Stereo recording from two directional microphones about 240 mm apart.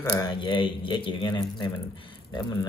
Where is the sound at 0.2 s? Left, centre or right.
Centre.